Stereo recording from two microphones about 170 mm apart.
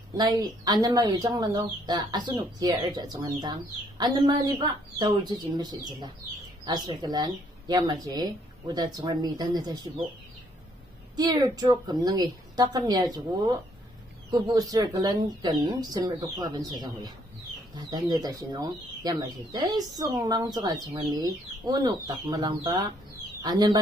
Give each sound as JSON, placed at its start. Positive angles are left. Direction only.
{"t": 0.2, "sound": "speech", "side_deg": -25}
{"t": 11.1, "sound": "speech", "side_deg": -25}